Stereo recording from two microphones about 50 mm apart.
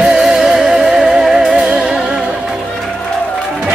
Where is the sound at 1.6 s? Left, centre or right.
Centre.